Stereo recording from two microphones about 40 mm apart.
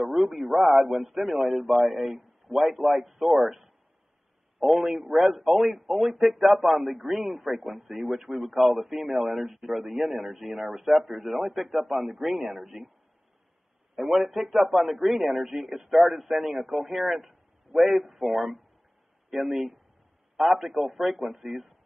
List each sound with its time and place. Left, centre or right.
0.0 s a man's voice: centre
13.9 s a man's voice: centre